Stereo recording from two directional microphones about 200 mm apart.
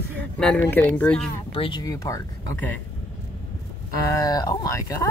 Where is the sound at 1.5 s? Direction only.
25° left (ahead or behind).